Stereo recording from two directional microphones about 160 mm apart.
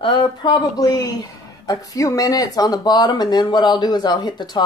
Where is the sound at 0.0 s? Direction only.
30° left (ahead or behind).